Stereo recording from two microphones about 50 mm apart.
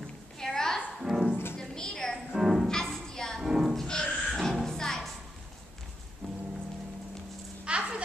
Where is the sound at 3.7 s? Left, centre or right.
Centre.